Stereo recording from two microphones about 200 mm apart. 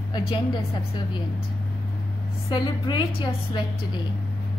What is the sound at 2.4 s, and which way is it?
Speech, 25° left (ahead or behind).